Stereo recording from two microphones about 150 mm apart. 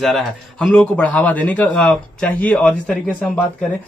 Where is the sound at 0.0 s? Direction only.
Centre (ahead or behind).